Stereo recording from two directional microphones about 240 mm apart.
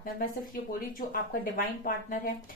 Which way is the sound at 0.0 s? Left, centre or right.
Left.